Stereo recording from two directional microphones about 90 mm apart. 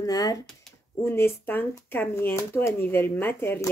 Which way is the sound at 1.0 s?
25° left (ahead or behind).